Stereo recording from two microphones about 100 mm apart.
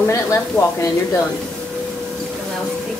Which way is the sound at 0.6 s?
25° left (ahead or behind).